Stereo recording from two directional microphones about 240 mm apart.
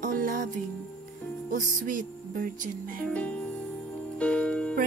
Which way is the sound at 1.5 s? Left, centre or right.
Right.